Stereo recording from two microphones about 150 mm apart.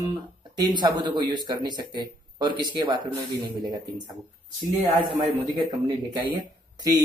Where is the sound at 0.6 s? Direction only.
30° right (ahead or behind).